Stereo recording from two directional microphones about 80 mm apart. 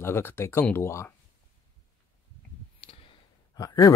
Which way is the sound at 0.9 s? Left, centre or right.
Left.